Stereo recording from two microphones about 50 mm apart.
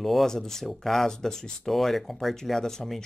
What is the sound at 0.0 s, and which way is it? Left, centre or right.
Speech, centre.